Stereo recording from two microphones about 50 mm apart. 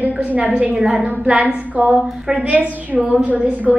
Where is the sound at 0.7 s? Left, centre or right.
Centre.